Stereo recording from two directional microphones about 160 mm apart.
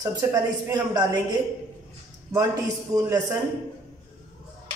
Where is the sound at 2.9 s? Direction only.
20° right (ahead or behind).